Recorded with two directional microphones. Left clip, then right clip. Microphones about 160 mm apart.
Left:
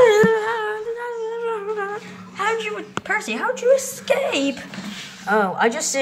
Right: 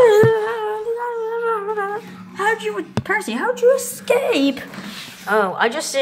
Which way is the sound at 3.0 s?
15° right (ahead or behind).